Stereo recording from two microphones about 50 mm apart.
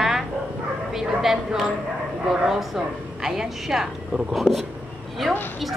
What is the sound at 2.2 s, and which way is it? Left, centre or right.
A woman's voice, centre.